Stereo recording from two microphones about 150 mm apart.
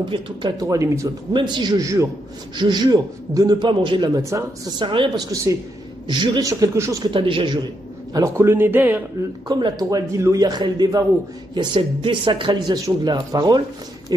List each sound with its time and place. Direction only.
0.0 s a man's voice: 30° right (ahead or behind)
5.3 s a man's voice: 20° right (ahead or behind)
7.1 s speech: 35° right (ahead or behind)
8.1 s speech: 20° right (ahead or behind)
9.5 s a man's voice: 25° right (ahead or behind)